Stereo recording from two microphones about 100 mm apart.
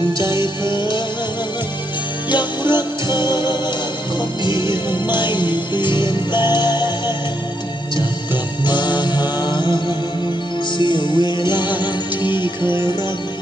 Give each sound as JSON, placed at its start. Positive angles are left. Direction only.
{"t": 0.2, "sound": "music", "side_deg": 50}
{"t": 2.3, "sound": "music", "side_deg": 50}
{"t": 8.6, "sound": "music", "side_deg": 45}